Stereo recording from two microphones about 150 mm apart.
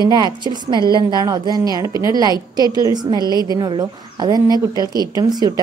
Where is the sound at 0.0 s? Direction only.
30° right (ahead or behind).